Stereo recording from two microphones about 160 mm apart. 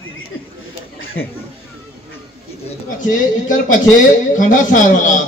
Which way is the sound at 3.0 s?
55° left (ahead or behind).